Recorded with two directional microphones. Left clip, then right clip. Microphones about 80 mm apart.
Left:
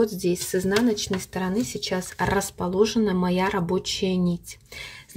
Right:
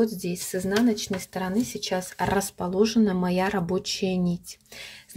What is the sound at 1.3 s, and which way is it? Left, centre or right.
Speech, right.